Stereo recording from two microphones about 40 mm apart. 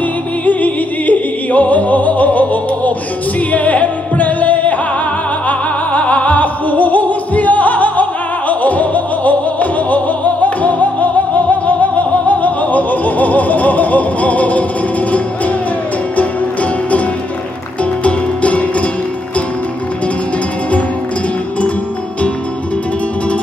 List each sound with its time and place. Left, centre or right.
0.5 s music: left
18.0 s music: left